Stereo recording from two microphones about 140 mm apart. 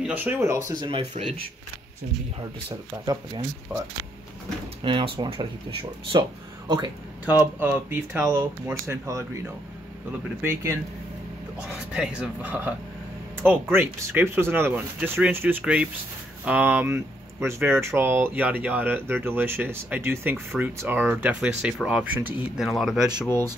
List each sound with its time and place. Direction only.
0.0 s speech: 10° right (ahead or behind)
0.7 s speech: 35° right (ahead or behind)
3.7 s speech: 15° right (ahead or behind)
4.8 s speech: 35° right (ahead or behind)
7.2 s speech: 15° right (ahead or behind)
10.4 s speech: 20° right (ahead or behind)
11.9 s speech: 5° right (ahead or behind)
23.2 s speech: 15° left (ahead or behind)